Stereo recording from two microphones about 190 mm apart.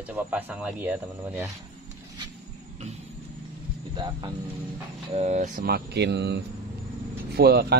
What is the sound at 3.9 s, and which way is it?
Speech, 25° right (ahead or behind).